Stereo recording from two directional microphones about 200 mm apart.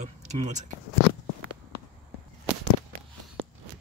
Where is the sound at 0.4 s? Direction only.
35° right (ahead or behind).